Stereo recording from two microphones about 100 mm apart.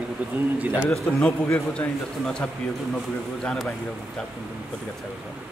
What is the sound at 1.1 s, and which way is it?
A man's voice, 10° left (ahead or behind).